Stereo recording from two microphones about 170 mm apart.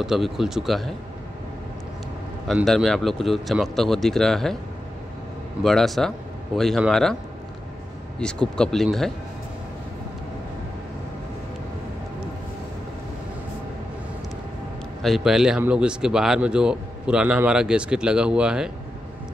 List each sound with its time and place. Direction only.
0.0 s speech: centre (ahead or behind)
2.4 s speech: centre (ahead or behind)
5.6 s speech: centre (ahead or behind)
8.2 s speech: 5° left (ahead or behind)
15.0 s speech: centre (ahead or behind)